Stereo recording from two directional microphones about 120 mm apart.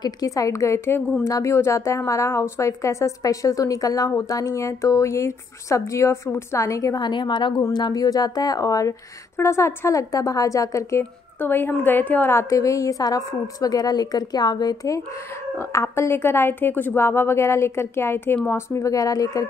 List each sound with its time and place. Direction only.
0.0 s a woman's voice: 30° left (ahead or behind)
7.1 s a woman's voice: 40° left (ahead or behind)